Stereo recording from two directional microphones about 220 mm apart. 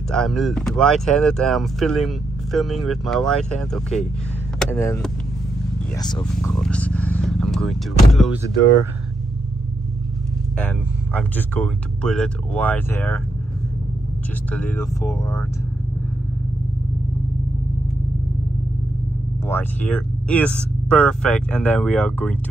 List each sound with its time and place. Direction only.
0.1 s speech: centre (ahead or behind)
5.9 s speech: 20° left (ahead or behind)
6.5 s speech: 5° left (ahead or behind)
10.6 s speech: 5° left (ahead or behind)
14.5 s speech: 5° left (ahead or behind)
19.4 s speech: 10° left (ahead or behind)